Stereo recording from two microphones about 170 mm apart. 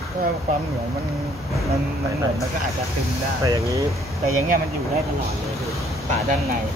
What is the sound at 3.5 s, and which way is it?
Speech, 20° right (ahead or behind).